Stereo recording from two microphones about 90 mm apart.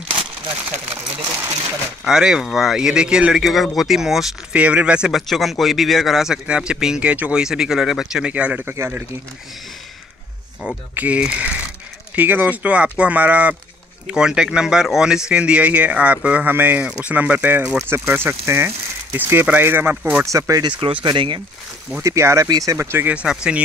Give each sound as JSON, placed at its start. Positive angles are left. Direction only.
{"t": 0.7, "sound": "a sound", "side_deg": -20}
{"t": 2.0, "sound": "speech", "side_deg": -5}
{"t": 5.2, "sound": "speech", "side_deg": 0}
{"t": 11.0, "sound": "speech", "side_deg": -15}
{"t": 20.0, "sound": "speech", "side_deg": -15}
{"t": 20.2, "sound": "speech", "side_deg": -35}
{"t": 20.8, "sound": "speech", "side_deg": -70}
{"t": 22.0, "sound": "speech", "side_deg": -35}
{"t": 23.1, "sound": "speech", "side_deg": -10}